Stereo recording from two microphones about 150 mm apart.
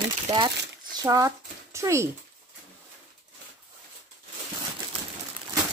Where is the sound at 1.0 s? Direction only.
20° right (ahead or behind).